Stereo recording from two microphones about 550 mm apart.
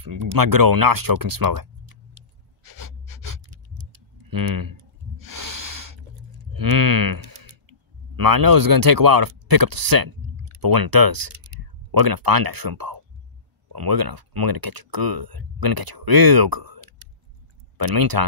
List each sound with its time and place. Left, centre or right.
0.0 s speech: right
2.6 s pant: right
4.3 s snort: right
6.5 s speech: right